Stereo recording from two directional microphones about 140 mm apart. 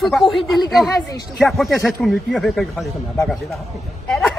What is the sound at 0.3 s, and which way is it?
Speech, 35° left (ahead or behind).